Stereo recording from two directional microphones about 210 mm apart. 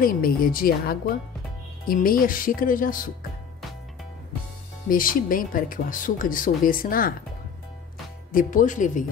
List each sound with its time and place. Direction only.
0.0 s a woman's voice: 45° left (ahead or behind)
4.8 s speech: 40° left (ahead or behind)
8.3 s speech: 40° left (ahead or behind)